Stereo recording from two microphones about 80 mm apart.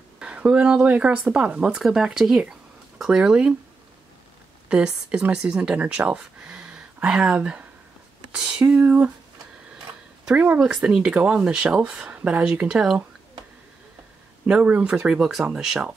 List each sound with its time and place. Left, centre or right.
0.2 s speech: centre
4.6 s speech: centre
10.2 s speech: centre
14.5 s speech: centre
15.0 s speech: centre